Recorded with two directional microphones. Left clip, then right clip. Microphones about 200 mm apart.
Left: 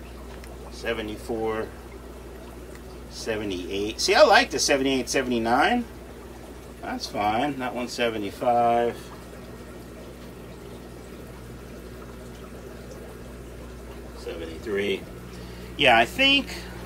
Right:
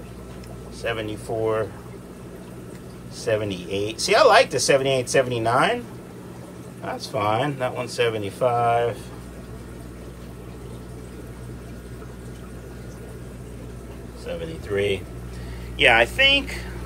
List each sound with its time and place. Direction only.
0.8 s speech: centre (ahead or behind)
3.2 s speech: centre (ahead or behind)
6.9 s speech: centre (ahead or behind)
14.2 s a sound: centre (ahead or behind)
15.8 s speech: 20° left (ahead or behind)